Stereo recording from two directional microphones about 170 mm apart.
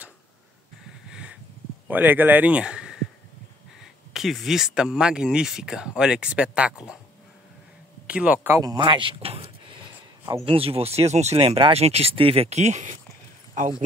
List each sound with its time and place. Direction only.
1.0 s a sound: 5° right (ahead or behind)
1.9 s speech: 10° right (ahead or behind)
8.1 s speech: 10° right (ahead or behind)
8.5 s speech: 25° right (ahead or behind)
10.4 s speech: 35° right (ahead or behind)